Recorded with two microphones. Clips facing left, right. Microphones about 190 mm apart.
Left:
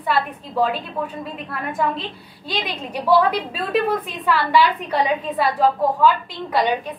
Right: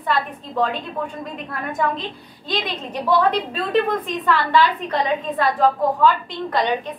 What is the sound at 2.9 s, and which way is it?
A woman's voice, 10° left (ahead or behind).